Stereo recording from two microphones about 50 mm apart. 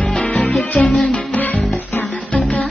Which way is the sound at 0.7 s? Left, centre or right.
Centre.